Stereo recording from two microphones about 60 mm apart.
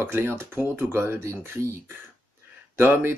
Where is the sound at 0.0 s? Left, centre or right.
Right.